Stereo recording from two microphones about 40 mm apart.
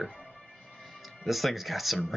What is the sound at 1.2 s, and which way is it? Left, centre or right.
Speech, centre.